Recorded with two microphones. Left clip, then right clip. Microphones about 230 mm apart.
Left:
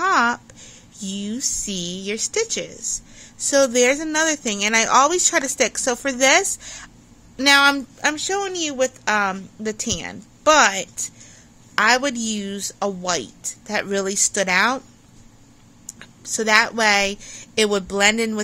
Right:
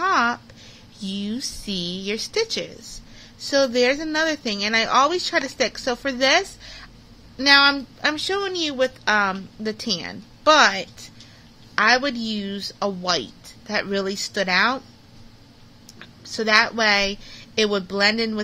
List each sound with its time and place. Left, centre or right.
0.0 s speech: centre
8.1 s speech: centre
15.9 s a woman's voice: centre